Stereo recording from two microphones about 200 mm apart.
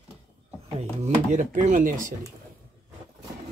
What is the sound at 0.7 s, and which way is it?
Speech, 35° right (ahead or behind).